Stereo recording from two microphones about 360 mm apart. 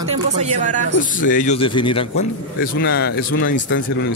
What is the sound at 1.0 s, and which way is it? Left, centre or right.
A man's voice, left.